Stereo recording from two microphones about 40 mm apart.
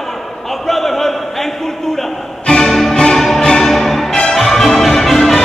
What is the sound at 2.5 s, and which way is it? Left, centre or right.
Music, centre.